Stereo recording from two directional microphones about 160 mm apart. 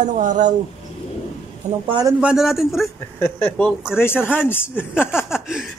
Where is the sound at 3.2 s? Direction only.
15° left (ahead or behind).